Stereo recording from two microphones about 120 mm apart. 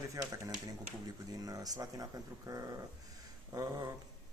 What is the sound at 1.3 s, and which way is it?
A man's voice, 30° right (ahead or behind).